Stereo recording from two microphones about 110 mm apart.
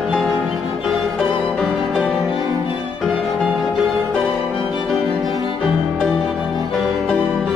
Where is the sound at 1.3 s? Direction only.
10° left (ahead or behind).